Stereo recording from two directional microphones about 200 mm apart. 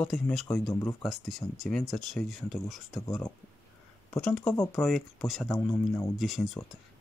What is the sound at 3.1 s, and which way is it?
Speech, 15° left (ahead or behind).